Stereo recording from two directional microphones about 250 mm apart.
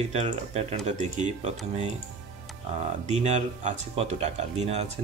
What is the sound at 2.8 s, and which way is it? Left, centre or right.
Speech, right.